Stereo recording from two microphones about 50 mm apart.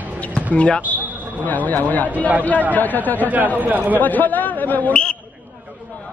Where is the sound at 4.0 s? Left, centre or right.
Left.